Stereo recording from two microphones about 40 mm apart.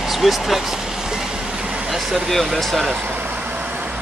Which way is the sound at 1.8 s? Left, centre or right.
Centre.